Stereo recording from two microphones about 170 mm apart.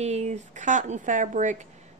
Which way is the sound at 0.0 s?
40° right (ahead or behind).